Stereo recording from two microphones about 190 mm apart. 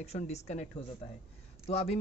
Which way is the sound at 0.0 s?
35° left (ahead or behind).